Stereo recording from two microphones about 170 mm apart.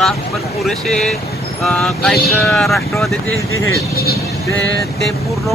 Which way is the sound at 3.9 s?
80° left.